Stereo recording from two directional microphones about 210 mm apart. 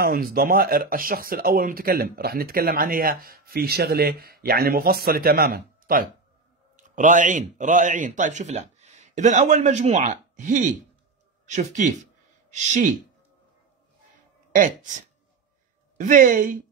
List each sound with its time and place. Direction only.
0.0 s a man's voice: 45° right (ahead or behind)
14.5 s speech: 40° right (ahead or behind)